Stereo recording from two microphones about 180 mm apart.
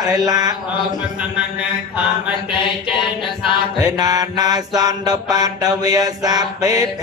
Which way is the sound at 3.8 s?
20° right (ahead or behind).